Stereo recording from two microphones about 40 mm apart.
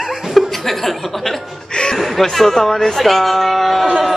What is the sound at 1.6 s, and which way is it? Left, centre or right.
Speech, centre.